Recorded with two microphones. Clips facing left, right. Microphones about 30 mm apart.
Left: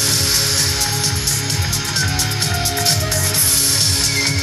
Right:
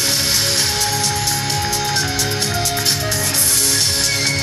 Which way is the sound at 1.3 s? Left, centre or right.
Centre.